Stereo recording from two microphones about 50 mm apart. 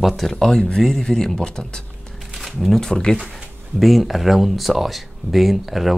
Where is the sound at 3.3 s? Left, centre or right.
Centre.